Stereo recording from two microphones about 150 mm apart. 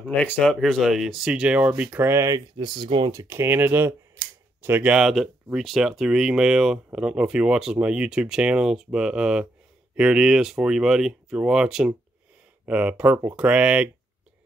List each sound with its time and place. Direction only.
0.1 s speech: 10° left (ahead or behind); by 3.1 s 35° right (ahead or behind)
3.1 s speech: 20° right (ahead or behind)